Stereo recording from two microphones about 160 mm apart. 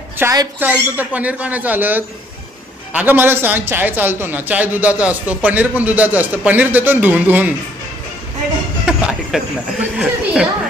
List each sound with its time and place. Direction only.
0.2 s a man's voice: 15° right (ahead or behind)
8.8 s speech: 5° right (ahead or behind)